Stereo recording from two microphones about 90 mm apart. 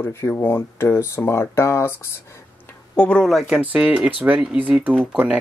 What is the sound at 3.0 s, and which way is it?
Speech, 10° left (ahead or behind).